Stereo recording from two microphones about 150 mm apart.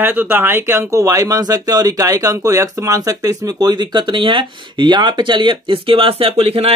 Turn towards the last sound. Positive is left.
turn(degrees=-40)  # may be behind; listen again after turning